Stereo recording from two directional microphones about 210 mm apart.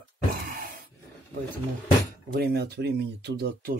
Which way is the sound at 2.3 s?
50° right (ahead or behind).